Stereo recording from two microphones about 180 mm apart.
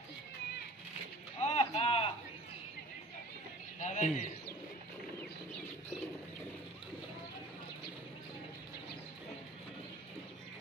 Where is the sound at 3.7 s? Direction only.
40° left (ahead or behind).